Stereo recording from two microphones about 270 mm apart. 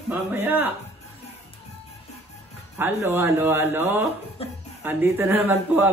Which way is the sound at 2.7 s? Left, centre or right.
Centre.